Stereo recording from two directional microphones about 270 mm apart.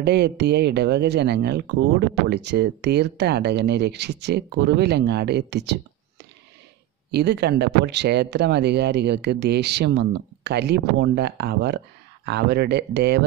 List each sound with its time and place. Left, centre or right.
0.0 s speech: right
7.1 s speech: right